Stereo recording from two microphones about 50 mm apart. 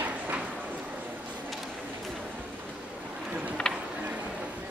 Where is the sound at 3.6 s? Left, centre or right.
Centre.